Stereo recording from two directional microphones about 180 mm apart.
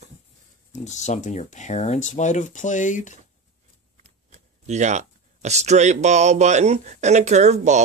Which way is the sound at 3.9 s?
40° right (ahead or behind).